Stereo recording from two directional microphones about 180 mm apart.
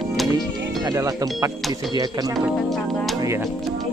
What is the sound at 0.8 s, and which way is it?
Speech, 20° right (ahead or behind).